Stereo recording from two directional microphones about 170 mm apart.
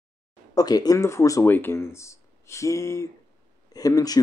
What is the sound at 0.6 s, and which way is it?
Speech, 20° left (ahead or behind).